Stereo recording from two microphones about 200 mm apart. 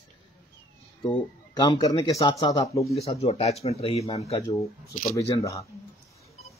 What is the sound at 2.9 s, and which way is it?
Speech, 30° left (ahead or behind).